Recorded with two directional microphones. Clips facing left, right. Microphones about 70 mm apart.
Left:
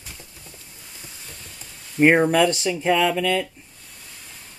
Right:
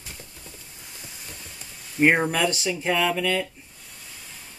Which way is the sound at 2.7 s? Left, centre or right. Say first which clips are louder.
Left 4 dB; centre.